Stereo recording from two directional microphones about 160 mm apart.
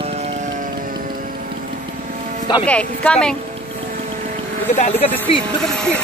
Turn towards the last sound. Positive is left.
turn(degrees=5)  # may be behind; listen again after turning